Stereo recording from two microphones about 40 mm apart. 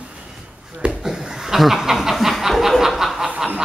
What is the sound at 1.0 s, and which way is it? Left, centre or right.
Chuckle, centre.